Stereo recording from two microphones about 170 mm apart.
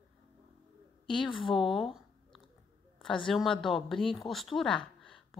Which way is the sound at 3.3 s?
Centre (ahead or behind).